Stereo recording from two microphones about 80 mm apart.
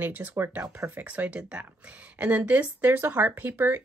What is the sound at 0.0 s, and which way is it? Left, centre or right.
Speech, right.